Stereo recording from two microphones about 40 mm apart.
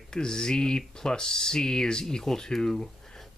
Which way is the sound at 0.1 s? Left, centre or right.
Centre.